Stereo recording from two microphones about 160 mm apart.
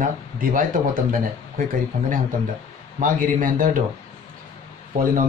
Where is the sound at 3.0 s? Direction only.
60° right (ahead or behind).